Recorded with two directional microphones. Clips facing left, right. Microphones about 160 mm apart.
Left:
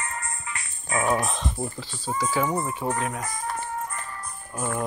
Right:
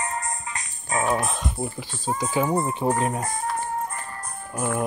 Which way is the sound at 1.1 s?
5° left (ahead or behind).